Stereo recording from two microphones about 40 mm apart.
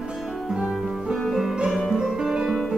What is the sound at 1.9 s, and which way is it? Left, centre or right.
Music, centre.